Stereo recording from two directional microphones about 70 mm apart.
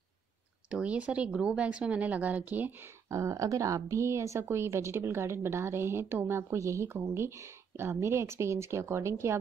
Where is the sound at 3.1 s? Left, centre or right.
Right.